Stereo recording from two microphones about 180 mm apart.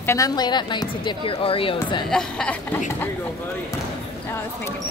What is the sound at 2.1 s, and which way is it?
Speech, 5° left (ahead or behind).